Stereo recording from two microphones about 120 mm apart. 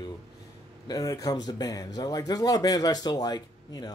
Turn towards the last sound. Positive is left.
turn(degrees=35)  # may be behind; listen again after turning